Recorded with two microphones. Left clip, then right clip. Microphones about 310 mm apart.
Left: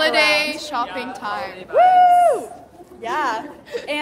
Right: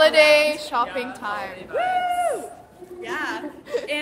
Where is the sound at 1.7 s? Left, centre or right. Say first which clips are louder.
Left 11 dB; centre.